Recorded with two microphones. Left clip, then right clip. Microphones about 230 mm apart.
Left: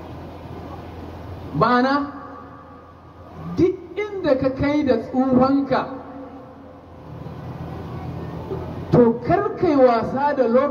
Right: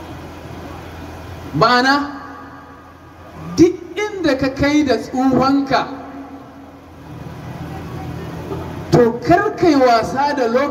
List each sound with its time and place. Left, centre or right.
1.6 s a woman's voice: right
3.5 s speech: right
8.9 s a woman's voice: right